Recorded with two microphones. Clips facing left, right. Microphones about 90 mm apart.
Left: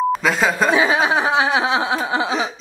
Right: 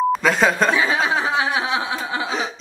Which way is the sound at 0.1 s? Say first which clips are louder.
Right 1 dB; centre (ahead or behind).